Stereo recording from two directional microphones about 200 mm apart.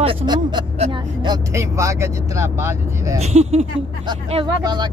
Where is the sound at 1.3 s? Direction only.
15° right (ahead or behind).